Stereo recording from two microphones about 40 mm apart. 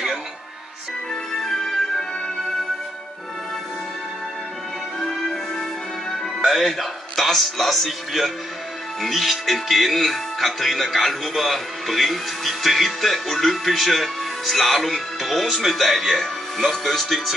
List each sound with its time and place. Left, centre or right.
1.4 s music: centre
5.2 s music: centre
6.4 s speech: centre